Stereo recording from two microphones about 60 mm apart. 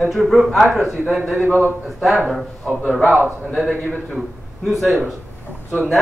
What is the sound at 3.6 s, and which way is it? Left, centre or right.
Speech, left.